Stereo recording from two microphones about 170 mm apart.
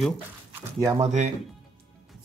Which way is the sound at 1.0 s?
40° right (ahead or behind).